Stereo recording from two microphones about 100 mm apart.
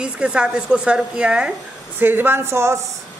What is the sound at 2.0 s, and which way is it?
Speech, 20° right (ahead or behind).